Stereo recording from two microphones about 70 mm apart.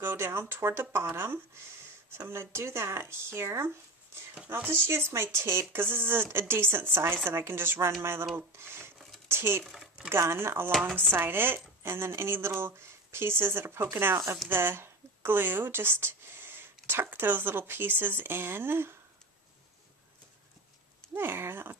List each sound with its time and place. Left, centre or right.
0.0 s speech: right
21.1 s speech: right